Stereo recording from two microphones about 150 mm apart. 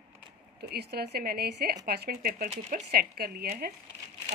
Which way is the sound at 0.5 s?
90° right.